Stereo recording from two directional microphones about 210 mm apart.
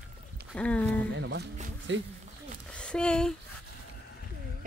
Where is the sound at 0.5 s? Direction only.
5° left (ahead or behind).